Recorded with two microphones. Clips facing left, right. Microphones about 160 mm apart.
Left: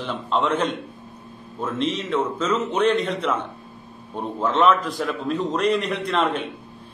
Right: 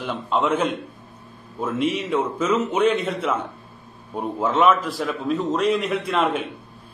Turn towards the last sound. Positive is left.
turn(degrees=-5)  # may be behind; listen again after turning